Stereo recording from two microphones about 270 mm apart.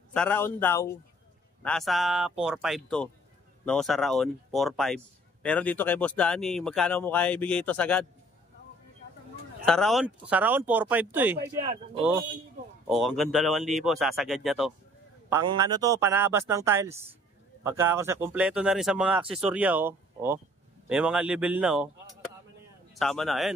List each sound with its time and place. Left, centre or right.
0.1 s a man's voice: centre
9.7 s a man's voice: centre
11.3 s speech: right
12.8 s a man's voice: centre
22.9 s speech: centre